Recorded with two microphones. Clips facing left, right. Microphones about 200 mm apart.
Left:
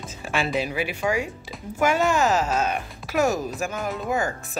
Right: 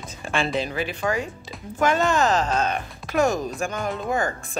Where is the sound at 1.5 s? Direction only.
10° left (ahead or behind).